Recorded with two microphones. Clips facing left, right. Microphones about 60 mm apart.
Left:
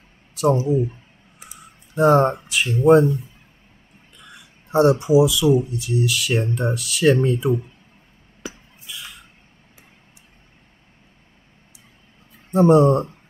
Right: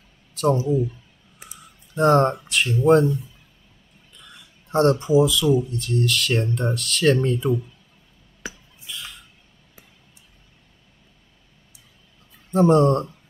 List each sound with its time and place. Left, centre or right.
0.3 s a sound: centre
0.6 s speech: left
2.0 s speech: centre
4.2 s a sound: centre
5.7 s speech: centre
12.5 s speech: centre